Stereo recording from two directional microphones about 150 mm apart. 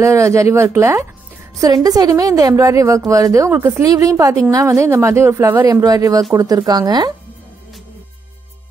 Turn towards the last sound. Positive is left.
turn(degrees=-30)  # may be behind; listen again after turning